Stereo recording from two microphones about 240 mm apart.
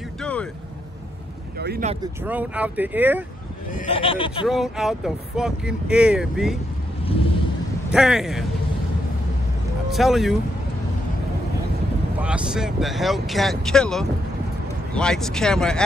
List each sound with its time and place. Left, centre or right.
0.2 s vehicle: centre
1.6 s speech: right
2.2 s speech: centre
3.7 s speech: left
4.5 s speech: centre
7.9 s speech: centre
9.8 s speech: centre
12.2 s speech: centre